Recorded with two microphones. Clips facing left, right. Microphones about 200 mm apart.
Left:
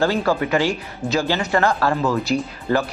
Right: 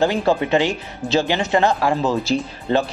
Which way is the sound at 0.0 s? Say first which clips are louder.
Right 1 dB; 20° right (ahead or behind).